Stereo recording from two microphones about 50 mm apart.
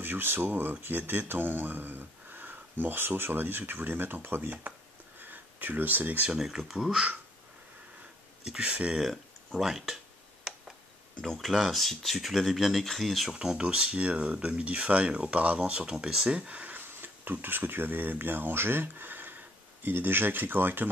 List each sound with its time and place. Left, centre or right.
0.0 s speech: right
5.2 s a sound: right
6.3 s speech: centre
8.5 s speech: right
8.9 s speech: centre
11.1 s speech: centre
13.3 s speech: centre
15.9 s speech: centre
16.3 s speech: right
16.7 s speech: right